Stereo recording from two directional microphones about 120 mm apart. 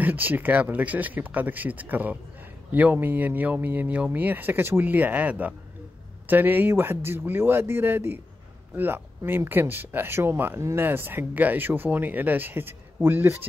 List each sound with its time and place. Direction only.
0.0 s speech: 15° right (ahead or behind)